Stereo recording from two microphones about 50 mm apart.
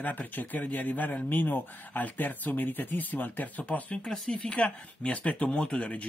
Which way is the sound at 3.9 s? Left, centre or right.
Centre.